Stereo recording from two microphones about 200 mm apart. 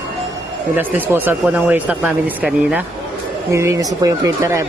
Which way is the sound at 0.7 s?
10° right (ahead or behind).